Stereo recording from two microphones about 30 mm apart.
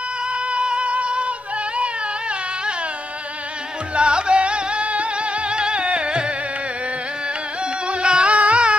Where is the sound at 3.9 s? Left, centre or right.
Right.